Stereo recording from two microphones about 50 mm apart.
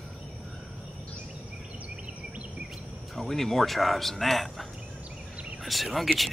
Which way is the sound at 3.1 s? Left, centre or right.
Centre.